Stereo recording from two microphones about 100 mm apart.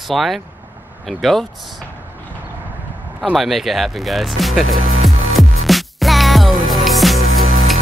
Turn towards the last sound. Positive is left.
turn(degrees=0)  # may be behind; listen again after turning